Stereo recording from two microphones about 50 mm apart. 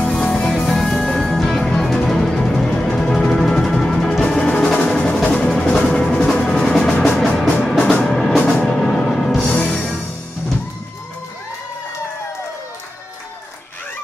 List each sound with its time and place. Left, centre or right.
0.2 s music: left
0.5 s music: centre
4.2 s percussion: centre
4.8 s music: centre